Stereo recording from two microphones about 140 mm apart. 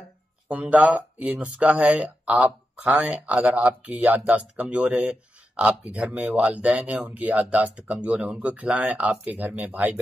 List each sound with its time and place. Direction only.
0.5 s speech: 10° right (ahead or behind)